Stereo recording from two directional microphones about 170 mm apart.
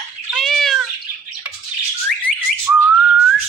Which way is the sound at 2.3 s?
10° left (ahead or behind).